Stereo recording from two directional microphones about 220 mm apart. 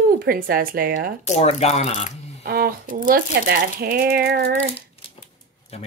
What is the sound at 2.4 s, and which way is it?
Speech, 45° right (ahead or behind).